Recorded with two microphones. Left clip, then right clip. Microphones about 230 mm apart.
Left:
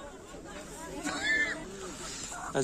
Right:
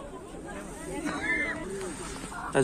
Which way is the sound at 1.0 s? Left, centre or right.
Left.